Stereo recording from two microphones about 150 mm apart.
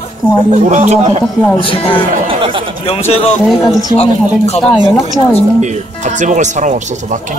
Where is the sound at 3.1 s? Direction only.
40° left (ahead or behind).